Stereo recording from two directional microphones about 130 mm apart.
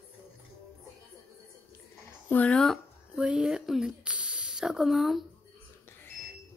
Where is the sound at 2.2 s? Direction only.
10° left (ahead or behind).